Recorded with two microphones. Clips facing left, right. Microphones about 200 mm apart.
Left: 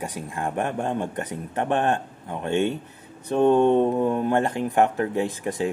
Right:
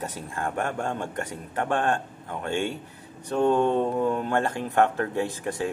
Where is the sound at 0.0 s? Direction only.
15° left (ahead or behind).